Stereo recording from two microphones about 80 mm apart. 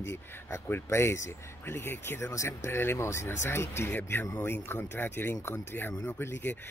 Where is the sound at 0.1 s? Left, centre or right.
Left.